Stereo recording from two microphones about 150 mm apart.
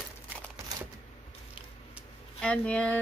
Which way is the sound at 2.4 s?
10° left (ahead or behind).